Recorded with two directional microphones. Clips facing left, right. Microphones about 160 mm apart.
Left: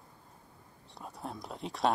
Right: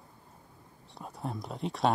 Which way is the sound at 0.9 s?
Centre (ahead or behind).